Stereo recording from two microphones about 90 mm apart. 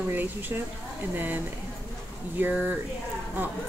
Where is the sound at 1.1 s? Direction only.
20° right (ahead or behind).